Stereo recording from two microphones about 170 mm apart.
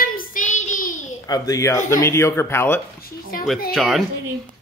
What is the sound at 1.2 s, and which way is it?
A child's voice, 20° left (ahead or behind).